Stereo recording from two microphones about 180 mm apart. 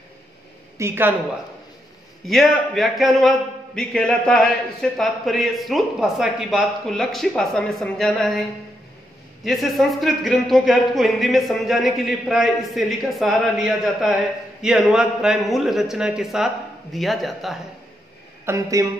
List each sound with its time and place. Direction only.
0.7 s a woman's voice: 15° right (ahead or behind)
2.2 s speech: centre (ahead or behind)
18.4 s a woman's voice: 15° right (ahead or behind)